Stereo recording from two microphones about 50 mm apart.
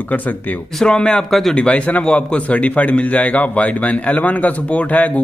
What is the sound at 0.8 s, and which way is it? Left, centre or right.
A man's voice, centre.